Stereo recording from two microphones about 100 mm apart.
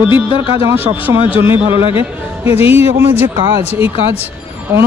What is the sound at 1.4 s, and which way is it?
Speech, 25° right (ahead or behind).